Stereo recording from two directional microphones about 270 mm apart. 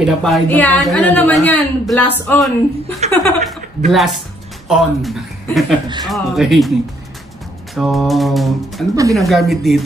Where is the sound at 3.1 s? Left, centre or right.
Centre.